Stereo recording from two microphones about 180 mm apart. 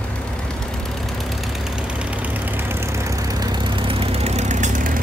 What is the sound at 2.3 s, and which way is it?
Vehicle, 15° right (ahead or behind).